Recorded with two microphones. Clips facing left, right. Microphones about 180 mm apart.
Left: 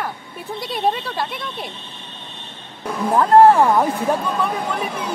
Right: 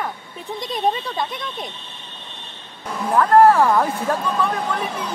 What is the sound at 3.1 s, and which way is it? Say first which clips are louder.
Speech: left 1 dB; 25° left (ahead or behind).